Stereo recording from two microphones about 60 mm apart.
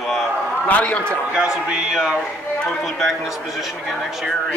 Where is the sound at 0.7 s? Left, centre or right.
Left.